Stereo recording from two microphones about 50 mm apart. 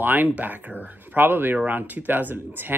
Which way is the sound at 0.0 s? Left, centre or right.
Right.